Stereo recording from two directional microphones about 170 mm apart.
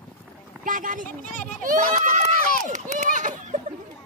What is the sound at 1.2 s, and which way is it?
Speech, 50° left (ahead or behind).